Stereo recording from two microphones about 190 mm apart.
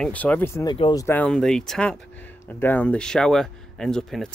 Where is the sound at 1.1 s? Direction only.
5° left (ahead or behind).